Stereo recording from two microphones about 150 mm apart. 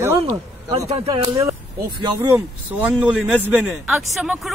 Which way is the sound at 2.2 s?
15° right (ahead or behind).